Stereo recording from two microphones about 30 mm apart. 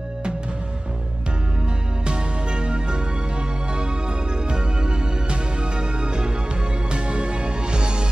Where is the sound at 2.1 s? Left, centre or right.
Right.